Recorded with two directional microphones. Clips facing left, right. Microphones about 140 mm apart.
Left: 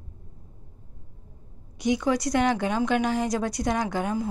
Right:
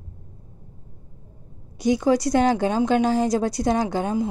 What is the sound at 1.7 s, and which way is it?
A woman's voice, 35° right (ahead or behind).